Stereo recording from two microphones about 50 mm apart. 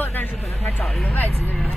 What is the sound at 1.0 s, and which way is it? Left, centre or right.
Speech, left.